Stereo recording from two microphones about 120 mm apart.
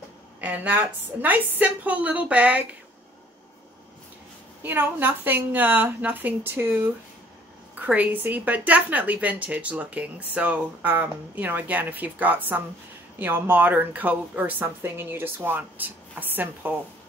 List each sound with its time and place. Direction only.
0.4 s a woman's voice: 10° right (ahead or behind)
4.6 s a woman's voice: 15° right (ahead or behind)